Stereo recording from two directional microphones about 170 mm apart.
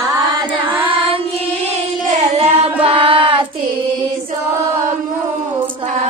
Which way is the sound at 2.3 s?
35° right (ahead or behind).